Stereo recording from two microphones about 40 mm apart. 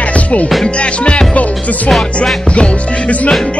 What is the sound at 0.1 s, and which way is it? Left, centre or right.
Music, left.